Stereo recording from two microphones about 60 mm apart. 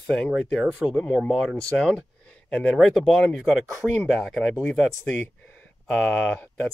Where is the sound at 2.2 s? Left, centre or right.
Centre.